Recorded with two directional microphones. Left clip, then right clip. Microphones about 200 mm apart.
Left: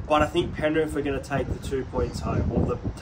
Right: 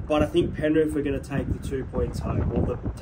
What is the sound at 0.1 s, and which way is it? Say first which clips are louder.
Speech: left 1 dB; 5° left (ahead or behind).